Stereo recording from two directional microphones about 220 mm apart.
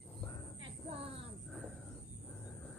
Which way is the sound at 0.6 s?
25° right (ahead or behind).